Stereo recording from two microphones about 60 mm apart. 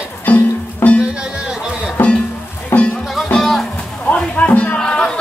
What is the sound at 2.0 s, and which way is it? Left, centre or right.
Music, left.